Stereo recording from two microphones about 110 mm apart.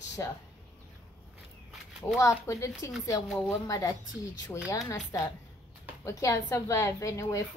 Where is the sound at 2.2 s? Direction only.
30° left (ahead or behind).